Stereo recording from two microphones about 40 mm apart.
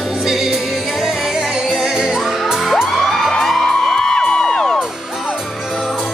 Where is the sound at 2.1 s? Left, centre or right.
Centre.